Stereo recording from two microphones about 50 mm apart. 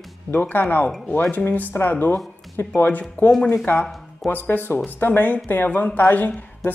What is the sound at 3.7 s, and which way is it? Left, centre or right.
Speech, left.